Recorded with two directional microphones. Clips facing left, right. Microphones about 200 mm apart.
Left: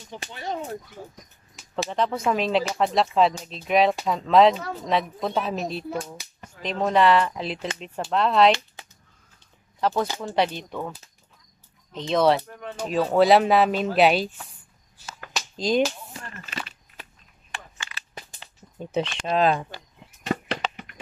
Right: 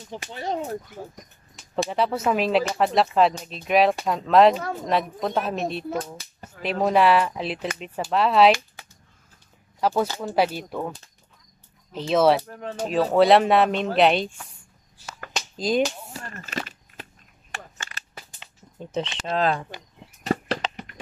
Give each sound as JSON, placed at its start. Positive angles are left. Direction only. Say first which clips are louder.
{"t": 0.3, "sound": "speech", "louder": "right 3 dB", "side_deg": -40}
{"t": 1.9, "sound": "speech", "louder": "even", "side_deg": -5}
{"t": 9.8, "sound": "speech", "louder": "right 1 dB", "side_deg": -10}
{"t": 11.9, "sound": "speech", "louder": "right 2 dB", "side_deg": -5}
{"t": 12.4, "sound": "speech", "louder": "right 3 dB", "side_deg": -40}
{"t": 12.9, "sound": "speech", "louder": "right 1 dB", "side_deg": 0}
{"t": 15.5, "sound": "speech", "louder": "even", "side_deg": -5}
{"t": 16.1, "sound": "a sound", "louder": "right 3 dB", "side_deg": -45}
{"t": 19.1, "sound": "speech", "louder": "left 2 dB", "side_deg": 15}
{"t": 20.2, "sound": "a sound", "louder": "right 2 dB", "side_deg": -35}